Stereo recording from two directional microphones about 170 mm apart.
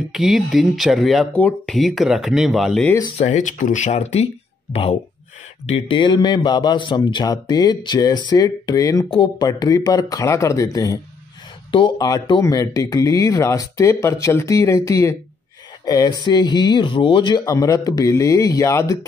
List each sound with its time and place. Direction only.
0.1 s speech: centre (ahead or behind)
3.2 s speech: 45° left (ahead or behind)
5.7 s speech: 30° left (ahead or behind)